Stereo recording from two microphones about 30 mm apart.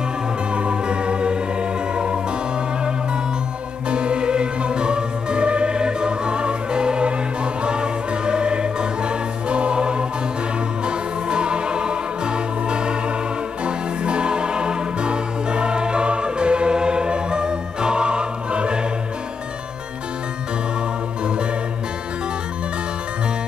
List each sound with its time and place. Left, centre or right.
0.6 s music: right
3.9 s music: right